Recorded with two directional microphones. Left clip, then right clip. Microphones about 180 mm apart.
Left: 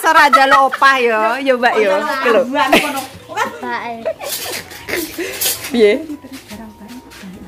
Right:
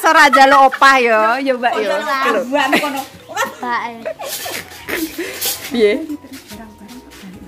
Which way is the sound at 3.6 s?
30° right (ahead or behind).